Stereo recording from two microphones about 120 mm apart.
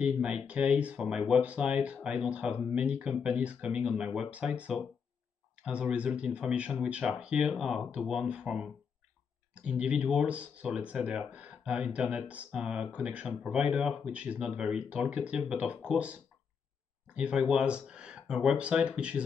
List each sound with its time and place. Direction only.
0.0 s speech: 10° right (ahead or behind)